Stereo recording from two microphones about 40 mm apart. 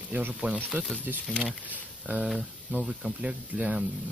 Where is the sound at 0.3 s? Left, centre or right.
Right.